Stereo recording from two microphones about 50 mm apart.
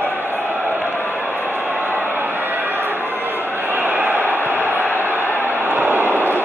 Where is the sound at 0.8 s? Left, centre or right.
Left.